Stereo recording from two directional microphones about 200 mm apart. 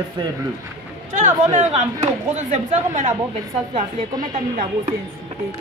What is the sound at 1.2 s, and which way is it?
Speech, 35° right (ahead or behind).